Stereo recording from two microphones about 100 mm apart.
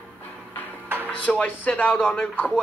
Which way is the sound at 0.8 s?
20° right (ahead or behind).